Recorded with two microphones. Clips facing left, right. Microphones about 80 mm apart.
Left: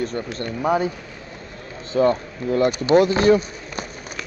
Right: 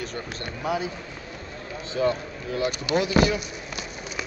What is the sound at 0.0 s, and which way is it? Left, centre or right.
Speech, left.